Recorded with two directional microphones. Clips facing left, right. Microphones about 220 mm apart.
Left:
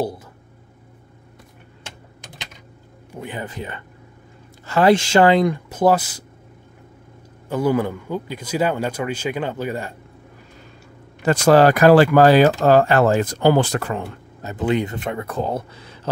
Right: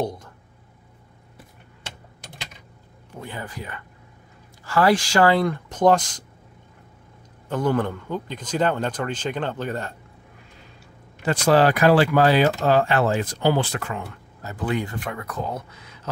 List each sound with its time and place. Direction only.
3.2 s a man's voice: 20° left (ahead or behind)
7.4 s a man's voice: 10° left (ahead or behind)
11.2 s speech: 45° left (ahead or behind)
14.4 s speech: 25° left (ahead or behind)